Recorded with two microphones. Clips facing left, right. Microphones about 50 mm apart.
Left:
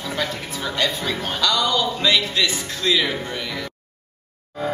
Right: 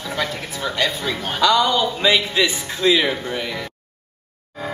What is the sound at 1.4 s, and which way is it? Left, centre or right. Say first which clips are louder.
A man's voice: right 5 dB; centre.